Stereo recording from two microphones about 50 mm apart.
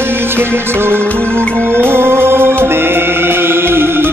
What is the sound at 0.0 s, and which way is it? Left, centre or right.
Music, right.